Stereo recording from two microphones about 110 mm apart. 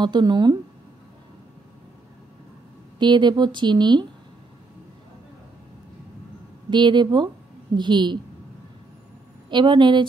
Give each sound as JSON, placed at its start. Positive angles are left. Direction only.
{"t": 0.0, "sound": "speech", "side_deg": -40}
{"t": 3.0, "sound": "speech", "side_deg": -45}
{"t": 6.7, "sound": "speech", "side_deg": -45}
{"t": 9.5, "sound": "speech", "side_deg": -45}